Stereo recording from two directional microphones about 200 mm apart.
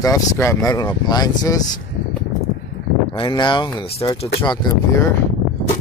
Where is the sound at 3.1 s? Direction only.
25° left (ahead or behind).